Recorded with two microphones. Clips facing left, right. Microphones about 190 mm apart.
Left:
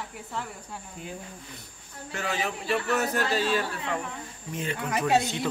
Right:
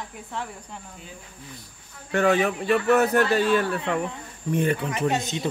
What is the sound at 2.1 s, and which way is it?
A man's voice, 55° right (ahead or behind).